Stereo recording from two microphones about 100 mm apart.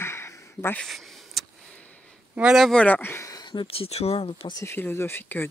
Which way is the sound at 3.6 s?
75° left (ahead or behind).